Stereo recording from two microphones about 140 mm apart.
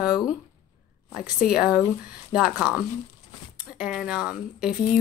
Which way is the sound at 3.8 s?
5° right (ahead or behind).